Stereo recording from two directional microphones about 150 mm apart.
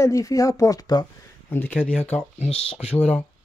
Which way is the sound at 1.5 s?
10° left (ahead or behind).